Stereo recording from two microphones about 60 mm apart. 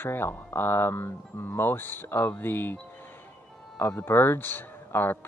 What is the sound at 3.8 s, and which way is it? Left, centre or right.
Speech, left.